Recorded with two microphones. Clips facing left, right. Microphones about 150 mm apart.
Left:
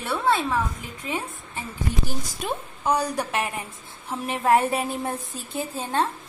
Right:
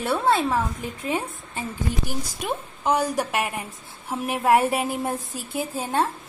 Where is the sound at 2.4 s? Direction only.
20° right (ahead or behind).